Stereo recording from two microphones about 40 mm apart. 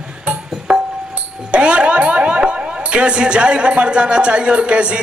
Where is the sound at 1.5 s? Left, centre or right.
Right.